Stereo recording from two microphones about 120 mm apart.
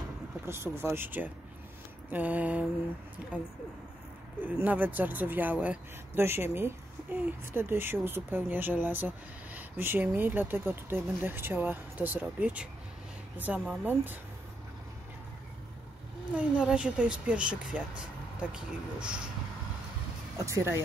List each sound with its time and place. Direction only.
0.5 s speech: 20° right (ahead or behind)
16.3 s speech: 10° right (ahead or behind)
20.3 s speech: 25° right (ahead or behind)